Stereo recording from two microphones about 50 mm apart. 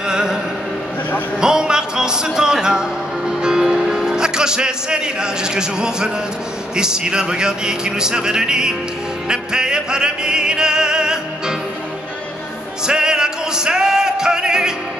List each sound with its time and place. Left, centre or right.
0.0 s a sound: centre
1.4 s music: centre
6.7 s speech: centre
9.3 s opera: centre
12.8 s music: centre